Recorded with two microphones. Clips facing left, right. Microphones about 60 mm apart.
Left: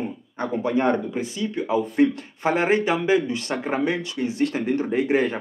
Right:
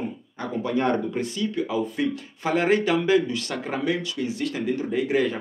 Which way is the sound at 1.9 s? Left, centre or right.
Left.